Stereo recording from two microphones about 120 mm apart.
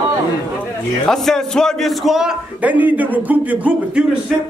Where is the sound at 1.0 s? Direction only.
5° left (ahead or behind).